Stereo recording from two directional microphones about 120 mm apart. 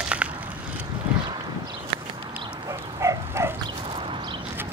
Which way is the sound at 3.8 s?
50° right (ahead or behind).